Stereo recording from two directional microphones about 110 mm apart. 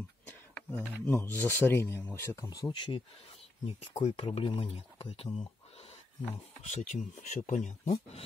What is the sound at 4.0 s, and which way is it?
Speech, 70° left (ahead or behind).